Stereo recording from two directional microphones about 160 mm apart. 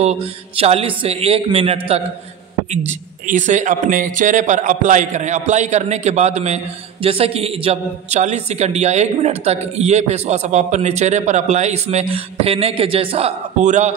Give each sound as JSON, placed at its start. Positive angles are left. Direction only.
{"t": 0.0, "sound": "a man's voice", "side_deg": -40}
{"t": 2.9, "sound": "a man's voice", "side_deg": -50}